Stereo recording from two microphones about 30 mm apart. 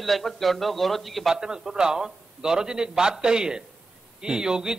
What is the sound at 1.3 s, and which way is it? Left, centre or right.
A man's voice, right.